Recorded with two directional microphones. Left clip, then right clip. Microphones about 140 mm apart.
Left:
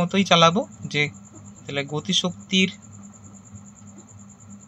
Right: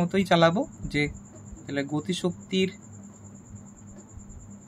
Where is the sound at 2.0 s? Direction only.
35° right (ahead or behind).